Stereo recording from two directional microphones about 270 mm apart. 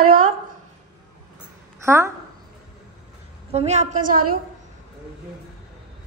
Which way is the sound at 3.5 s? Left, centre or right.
Right.